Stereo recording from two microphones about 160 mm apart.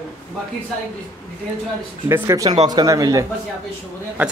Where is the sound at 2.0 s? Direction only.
15° right (ahead or behind).